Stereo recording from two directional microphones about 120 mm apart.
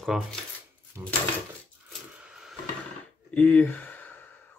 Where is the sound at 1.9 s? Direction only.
5° right (ahead or behind).